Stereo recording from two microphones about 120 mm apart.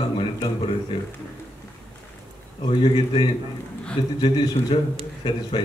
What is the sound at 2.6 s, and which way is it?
A man's voice, 40° left (ahead or behind).